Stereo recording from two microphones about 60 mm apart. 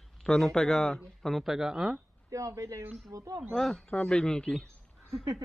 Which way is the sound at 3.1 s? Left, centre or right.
Right.